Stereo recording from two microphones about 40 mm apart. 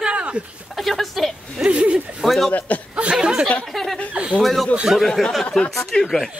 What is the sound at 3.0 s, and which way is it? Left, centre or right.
Speech, right.